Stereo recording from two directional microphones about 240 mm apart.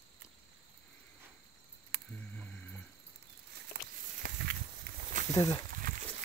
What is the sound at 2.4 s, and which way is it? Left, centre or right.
Music, centre.